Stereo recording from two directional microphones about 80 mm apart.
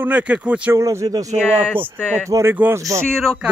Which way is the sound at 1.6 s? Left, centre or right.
Right.